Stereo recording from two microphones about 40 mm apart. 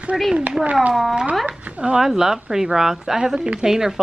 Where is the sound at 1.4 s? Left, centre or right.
Right.